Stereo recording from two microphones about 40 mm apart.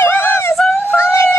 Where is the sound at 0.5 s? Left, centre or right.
Centre.